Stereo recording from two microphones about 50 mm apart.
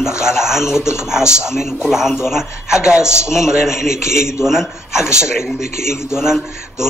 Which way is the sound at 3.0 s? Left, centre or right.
Left.